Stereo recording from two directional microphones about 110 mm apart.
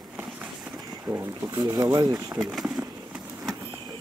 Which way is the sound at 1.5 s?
40° right (ahead or behind).